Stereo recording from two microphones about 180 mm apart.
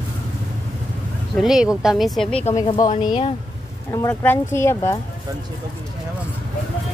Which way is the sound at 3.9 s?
20° left (ahead or behind).